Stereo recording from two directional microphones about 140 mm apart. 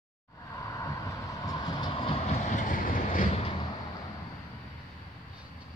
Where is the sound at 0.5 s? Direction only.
25° left (ahead or behind).